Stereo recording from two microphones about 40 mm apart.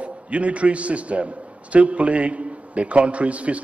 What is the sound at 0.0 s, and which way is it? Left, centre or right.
A man's voice, right.